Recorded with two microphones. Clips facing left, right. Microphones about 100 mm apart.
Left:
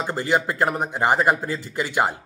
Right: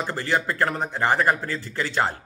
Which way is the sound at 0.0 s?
20° left (ahead or behind).